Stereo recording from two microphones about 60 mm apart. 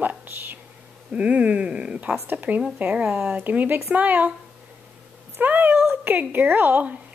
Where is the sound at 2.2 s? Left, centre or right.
Right.